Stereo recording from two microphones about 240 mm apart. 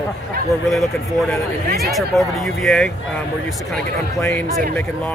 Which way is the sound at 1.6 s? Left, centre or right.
Right.